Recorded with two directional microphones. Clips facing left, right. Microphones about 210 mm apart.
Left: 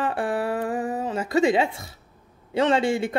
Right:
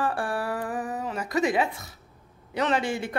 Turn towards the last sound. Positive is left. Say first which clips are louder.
# left 5 dB
turn(degrees=25)  # may be behind; listen again after turning